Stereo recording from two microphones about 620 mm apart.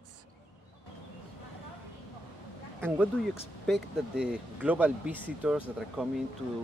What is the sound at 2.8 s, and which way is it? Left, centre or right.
Speech, centre.